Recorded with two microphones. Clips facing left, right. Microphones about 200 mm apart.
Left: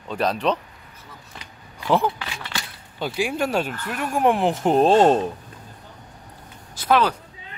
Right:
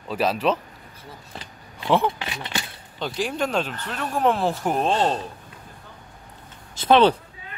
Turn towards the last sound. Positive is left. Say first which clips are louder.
# right 4 dB
turn(degrees=-25)  # may be behind; listen again after turning